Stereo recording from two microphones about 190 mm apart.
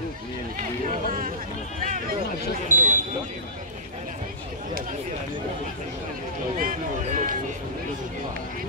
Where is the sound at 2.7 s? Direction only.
40° right (ahead or behind).